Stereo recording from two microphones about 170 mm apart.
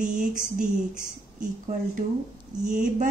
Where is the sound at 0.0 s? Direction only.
5° right (ahead or behind).